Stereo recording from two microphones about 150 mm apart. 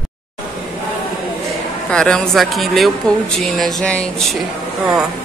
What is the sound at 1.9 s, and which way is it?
Speech, 5° left (ahead or behind).